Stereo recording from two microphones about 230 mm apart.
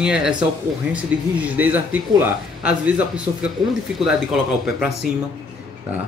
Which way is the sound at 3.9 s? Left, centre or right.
Centre.